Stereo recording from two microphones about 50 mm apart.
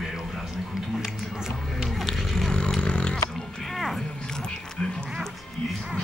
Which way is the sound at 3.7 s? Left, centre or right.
Centre.